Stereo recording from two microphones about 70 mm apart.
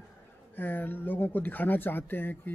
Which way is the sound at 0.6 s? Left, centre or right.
Left.